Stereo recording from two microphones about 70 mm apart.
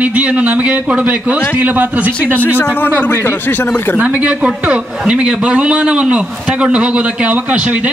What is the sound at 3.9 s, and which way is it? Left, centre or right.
A man's voice, centre.